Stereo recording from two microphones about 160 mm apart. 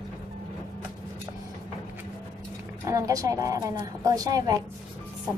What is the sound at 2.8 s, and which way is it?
A woman's voice, 20° right (ahead or behind).